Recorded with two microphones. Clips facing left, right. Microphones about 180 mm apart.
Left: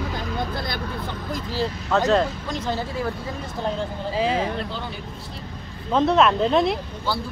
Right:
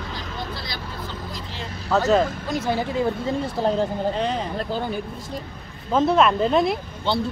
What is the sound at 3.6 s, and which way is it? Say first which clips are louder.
Speech: right 4 dB; 35° right (ahead or behind).